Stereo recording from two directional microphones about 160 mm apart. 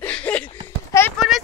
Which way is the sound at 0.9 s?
20° left (ahead or behind).